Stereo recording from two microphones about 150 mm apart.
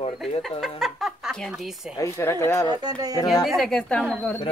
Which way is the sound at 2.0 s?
20° left (ahead or behind).